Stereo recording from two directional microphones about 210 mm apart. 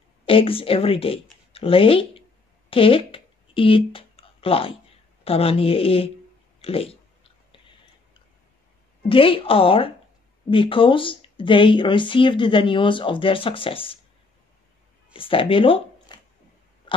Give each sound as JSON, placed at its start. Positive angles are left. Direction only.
{"t": 0.2, "sound": "speech", "side_deg": 25}
{"t": 2.7, "sound": "a sound", "side_deg": 25}
{"t": 5.2, "sound": "speech", "side_deg": 25}
{"t": 9.1, "sound": "speech", "side_deg": 25}
{"t": 15.1, "sound": "speech", "side_deg": 25}
{"t": 16.9, "sound": "a sound", "side_deg": 25}